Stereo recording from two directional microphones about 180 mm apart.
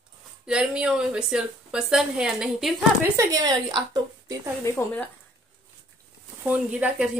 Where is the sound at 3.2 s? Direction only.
20° right (ahead or behind).